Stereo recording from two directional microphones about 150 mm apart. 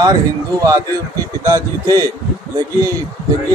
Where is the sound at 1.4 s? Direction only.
25° right (ahead or behind).